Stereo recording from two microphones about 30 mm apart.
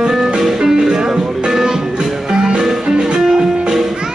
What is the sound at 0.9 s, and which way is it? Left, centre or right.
Music, right.